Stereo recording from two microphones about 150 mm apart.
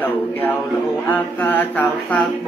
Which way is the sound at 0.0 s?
10° left (ahead or behind).